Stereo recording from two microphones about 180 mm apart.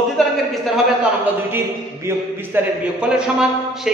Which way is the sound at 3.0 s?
5° right (ahead or behind).